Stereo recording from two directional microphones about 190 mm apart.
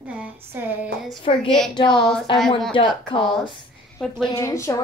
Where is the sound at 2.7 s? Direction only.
25° left (ahead or behind).